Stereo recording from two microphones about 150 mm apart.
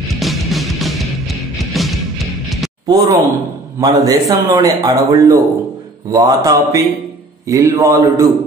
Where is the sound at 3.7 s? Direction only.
25° right (ahead or behind).